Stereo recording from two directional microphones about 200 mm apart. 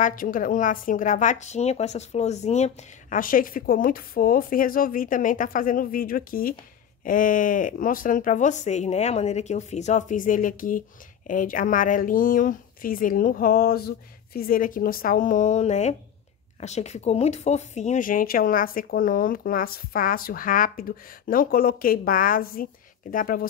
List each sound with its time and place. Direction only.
0.0 s speech: 40° left (ahead or behind)